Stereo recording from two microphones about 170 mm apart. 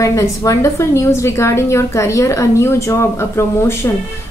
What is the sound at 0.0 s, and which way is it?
A woman's voice, 20° left (ahead or behind).